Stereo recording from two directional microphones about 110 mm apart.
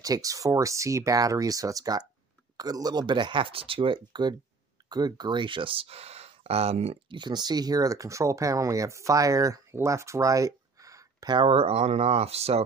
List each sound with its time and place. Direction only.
0.0 s speech: 30° right (ahead or behind); by 7.0 s 70° right (ahead or behind)
7.1 s speech: 45° right (ahead or behind)
11.5 s speech: 65° right (ahead or behind)